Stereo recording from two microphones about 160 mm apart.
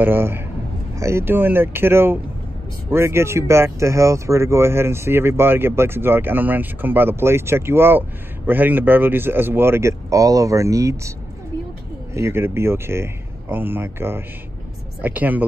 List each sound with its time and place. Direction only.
0.0 s speech: 15° right (ahead or behind)